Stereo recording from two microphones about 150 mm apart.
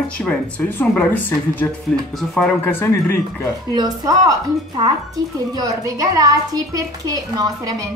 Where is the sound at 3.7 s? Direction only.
25° right (ahead or behind).